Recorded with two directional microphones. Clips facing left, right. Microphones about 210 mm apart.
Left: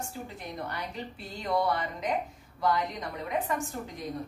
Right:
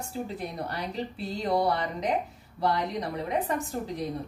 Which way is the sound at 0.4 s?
35° right (ahead or behind).